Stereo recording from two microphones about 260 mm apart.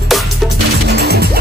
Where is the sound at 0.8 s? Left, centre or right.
Right.